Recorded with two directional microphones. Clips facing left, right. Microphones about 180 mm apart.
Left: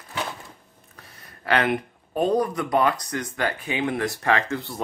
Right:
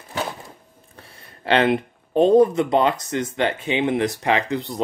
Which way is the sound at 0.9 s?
30° right (ahead or behind).